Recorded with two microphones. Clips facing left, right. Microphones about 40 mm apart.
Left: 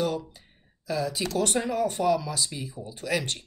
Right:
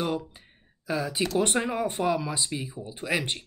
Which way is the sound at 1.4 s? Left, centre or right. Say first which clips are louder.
Left 3 dB; right.